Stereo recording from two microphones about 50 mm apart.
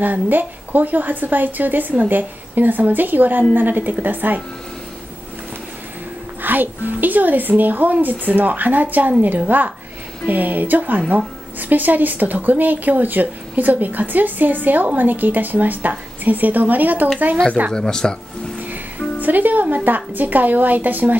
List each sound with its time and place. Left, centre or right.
0.0 s a woman's voice: right
6.4 s a woman's voice: right
17.7 s speech: centre
19.2 s a woman's voice: right